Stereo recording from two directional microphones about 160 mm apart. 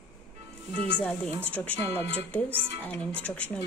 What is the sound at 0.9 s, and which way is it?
Speech, 10° left (ahead or behind).